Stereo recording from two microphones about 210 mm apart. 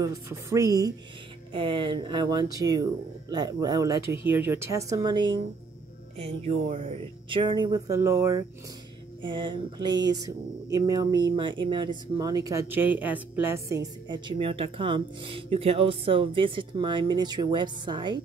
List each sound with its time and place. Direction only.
0.0 s speech: 15° right (ahead or behind)
14.0 s speech: 20° right (ahead or behind)